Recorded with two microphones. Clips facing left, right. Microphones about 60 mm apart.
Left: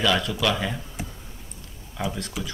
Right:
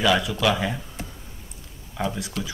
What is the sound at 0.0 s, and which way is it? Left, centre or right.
Speech, centre.